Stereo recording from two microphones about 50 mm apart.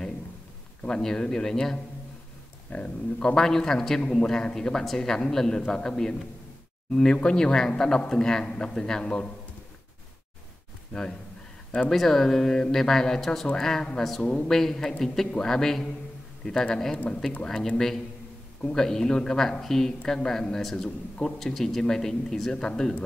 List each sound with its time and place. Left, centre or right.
0.8 s a man's voice: centre
2.7 s speech: left
3.3 s a man's voice: centre
10.9 s a man's voice: centre
11.9 s a man's voice: centre